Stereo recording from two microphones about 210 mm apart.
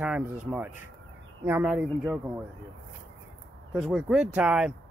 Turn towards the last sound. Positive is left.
turn(degrees=-5)  # may be behind; listen again after turning